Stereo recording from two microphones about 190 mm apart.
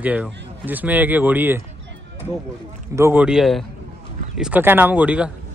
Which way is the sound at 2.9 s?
10° right (ahead or behind).